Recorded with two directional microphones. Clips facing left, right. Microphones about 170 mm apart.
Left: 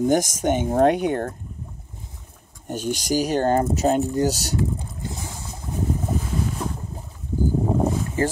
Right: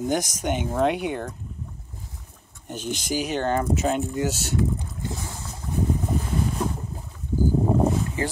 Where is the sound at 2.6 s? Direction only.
40° left (ahead or behind).